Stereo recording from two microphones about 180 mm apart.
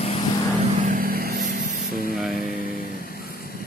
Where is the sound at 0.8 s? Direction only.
50° right (ahead or behind).